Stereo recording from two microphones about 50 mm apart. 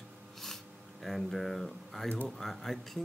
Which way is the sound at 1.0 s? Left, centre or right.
Centre.